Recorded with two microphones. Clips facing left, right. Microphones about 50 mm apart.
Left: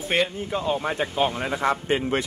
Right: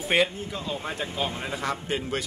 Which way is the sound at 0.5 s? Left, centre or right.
Left.